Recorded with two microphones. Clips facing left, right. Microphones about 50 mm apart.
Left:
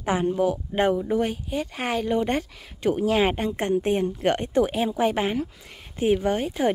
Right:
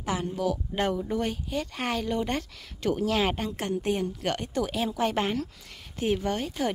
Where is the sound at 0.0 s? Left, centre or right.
Left.